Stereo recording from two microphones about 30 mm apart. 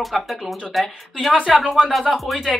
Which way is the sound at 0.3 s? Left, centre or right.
Centre.